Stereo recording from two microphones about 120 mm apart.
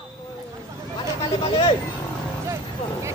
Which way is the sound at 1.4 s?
45° left (ahead or behind).